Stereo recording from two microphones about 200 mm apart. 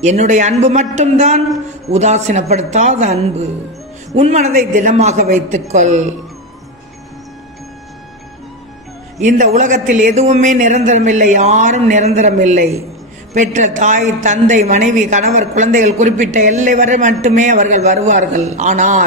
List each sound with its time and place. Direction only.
0.0 s a woman's voice: 35° right (ahead or behind)
9.2 s a woman's voice: 40° right (ahead or behind)